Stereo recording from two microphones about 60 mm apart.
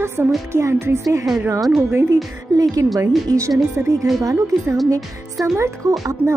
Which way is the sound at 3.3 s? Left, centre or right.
Right.